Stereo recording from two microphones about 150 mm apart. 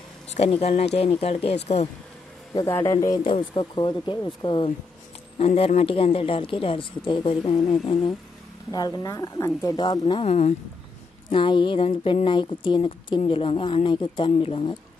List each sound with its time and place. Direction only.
0.3 s speech: 45° left (ahead or behind)
2.5 s speech: 20° left (ahead or behind); by 8.1 s 35° left (ahead or behind)
8.7 s speech: 25° left (ahead or behind)
9.8 s speech: 30° left (ahead or behind)